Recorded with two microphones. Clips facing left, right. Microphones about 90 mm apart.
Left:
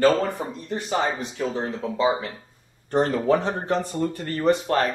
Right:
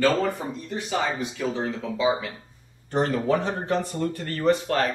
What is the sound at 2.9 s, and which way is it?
Speech, 35° left (ahead or behind).